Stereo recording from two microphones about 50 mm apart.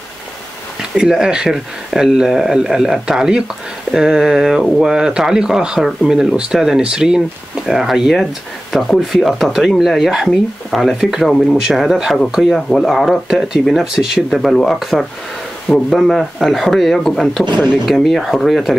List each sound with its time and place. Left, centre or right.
0.9 s speech: centre
15.7 s speech: left
16.1 s speech: centre